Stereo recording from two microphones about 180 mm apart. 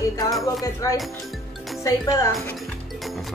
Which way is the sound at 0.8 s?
15° left (ahead or behind).